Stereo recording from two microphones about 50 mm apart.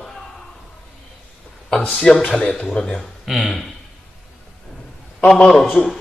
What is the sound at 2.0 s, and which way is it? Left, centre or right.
A man's voice, centre.